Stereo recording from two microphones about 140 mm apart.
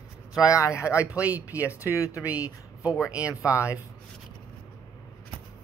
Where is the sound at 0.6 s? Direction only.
20° left (ahead or behind).